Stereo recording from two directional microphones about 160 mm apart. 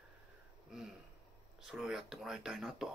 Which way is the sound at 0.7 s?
Centre (ahead or behind).